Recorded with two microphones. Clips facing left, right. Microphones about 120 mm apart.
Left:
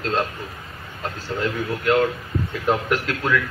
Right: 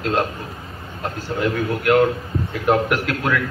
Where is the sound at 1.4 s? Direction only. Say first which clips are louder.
Right 3 dB; 5° right (ahead or behind).